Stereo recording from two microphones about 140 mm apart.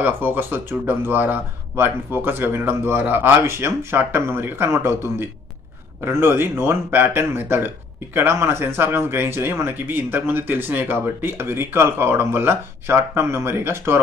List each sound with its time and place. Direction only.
0.0 s speech: 15° right (ahead or behind)